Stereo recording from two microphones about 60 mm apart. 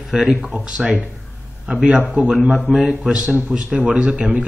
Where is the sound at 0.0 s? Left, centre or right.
Centre.